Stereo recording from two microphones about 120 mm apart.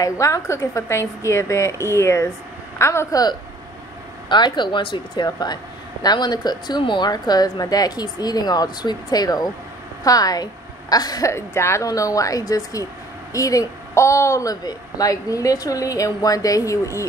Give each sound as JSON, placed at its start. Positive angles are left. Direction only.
{"t": 0.0, "sound": "a woman's voice", "side_deg": 25}